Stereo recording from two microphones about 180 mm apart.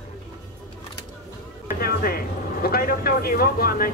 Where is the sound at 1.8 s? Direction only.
55° left (ahead or behind).